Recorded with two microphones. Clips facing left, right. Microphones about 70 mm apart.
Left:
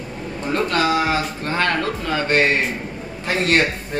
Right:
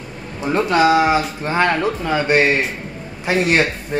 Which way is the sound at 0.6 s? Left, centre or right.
Centre.